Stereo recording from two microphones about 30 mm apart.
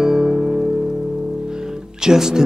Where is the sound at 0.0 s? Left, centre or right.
Right.